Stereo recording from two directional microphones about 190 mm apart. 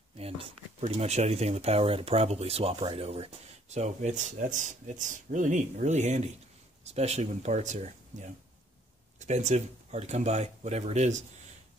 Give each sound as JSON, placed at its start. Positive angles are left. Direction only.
{"t": 0.2, "sound": "speech", "side_deg": -30}
{"t": 9.2, "sound": "speech", "side_deg": -40}